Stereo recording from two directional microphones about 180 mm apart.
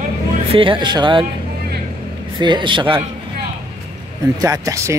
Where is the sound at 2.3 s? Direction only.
25° right (ahead or behind).